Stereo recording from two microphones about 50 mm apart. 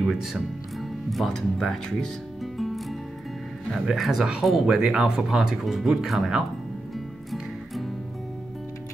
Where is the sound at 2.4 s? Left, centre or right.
Centre.